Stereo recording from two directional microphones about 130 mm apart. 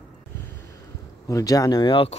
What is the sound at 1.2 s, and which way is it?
Speech, 25° left (ahead or behind).